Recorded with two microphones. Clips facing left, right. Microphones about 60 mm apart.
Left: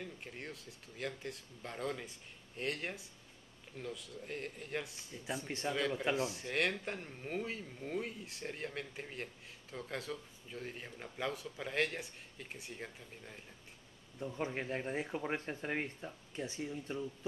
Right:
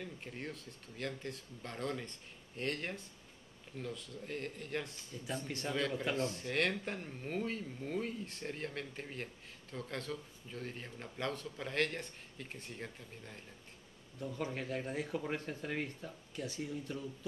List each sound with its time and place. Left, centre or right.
0.0 s speech: centre
14.2 s speech: left